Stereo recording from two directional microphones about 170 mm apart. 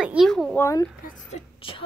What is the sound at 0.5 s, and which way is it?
Speech, 20° left (ahead or behind).